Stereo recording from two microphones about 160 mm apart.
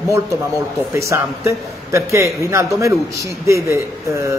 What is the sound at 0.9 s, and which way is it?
A man's voice, 15° right (ahead or behind).